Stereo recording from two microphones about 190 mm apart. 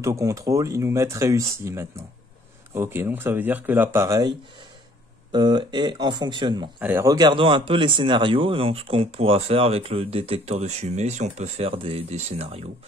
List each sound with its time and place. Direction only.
0.0 s speech: 15° right (ahead or behind)
5.3 s speech: 25° right (ahead or behind)
6.8 s speech: 10° right (ahead or behind); by 12.6 s 35° right (ahead or behind)